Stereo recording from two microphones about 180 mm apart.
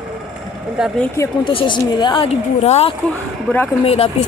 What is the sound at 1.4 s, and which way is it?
Speech, 30° left (ahead or behind).